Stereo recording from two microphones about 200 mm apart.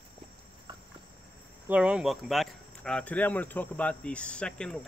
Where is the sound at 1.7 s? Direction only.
5° right (ahead or behind).